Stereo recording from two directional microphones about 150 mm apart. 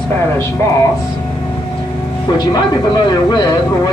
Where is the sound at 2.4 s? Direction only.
30° left (ahead or behind).